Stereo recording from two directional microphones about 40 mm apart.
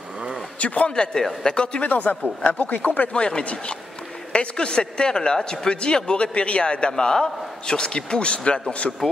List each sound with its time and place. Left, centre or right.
0.6 s speech: left
0.9 s speech: left
1.8 s speech: left
3.1 s speech: left
6.9 s speech: centre